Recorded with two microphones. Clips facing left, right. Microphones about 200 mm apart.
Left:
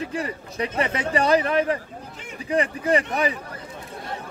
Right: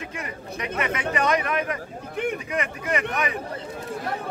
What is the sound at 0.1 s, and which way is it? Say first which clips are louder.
Speech: left 5 dB; 30° left (ahead or behind).